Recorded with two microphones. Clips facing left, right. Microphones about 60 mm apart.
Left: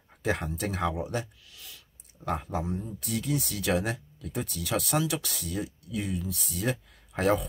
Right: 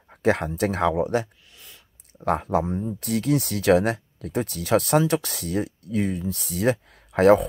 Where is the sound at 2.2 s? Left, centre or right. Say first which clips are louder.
Right 9 dB; right.